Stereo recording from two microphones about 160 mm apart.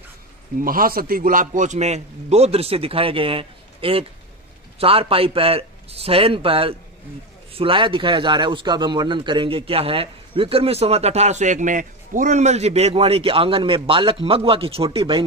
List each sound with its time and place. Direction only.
0.6 s a man's voice: 60° right (ahead or behind); by 15.2 s 35° right (ahead or behind)